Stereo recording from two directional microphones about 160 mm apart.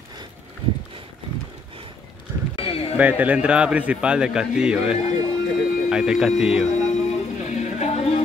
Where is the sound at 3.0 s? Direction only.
10° right (ahead or behind).